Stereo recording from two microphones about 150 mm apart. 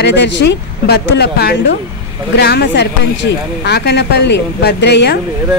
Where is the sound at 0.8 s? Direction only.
90° left.